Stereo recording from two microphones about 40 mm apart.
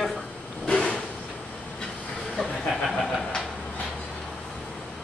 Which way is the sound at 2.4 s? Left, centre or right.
Centre.